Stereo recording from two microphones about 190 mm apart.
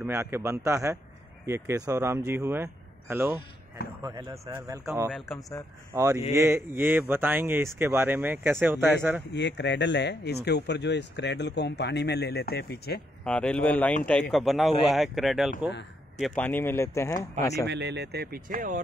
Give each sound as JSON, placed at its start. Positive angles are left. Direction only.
{"t": 0.0, "sound": "a man's voice", "side_deg": -10}
{"t": 5.9, "sound": "speech", "side_deg": -15}
{"t": 9.2, "sound": "speech", "side_deg": 65}
{"t": 13.2, "sound": "speech", "side_deg": 5}
{"t": 16.4, "sound": "speech", "side_deg": 10}
{"t": 17.6, "sound": "speech", "side_deg": -65}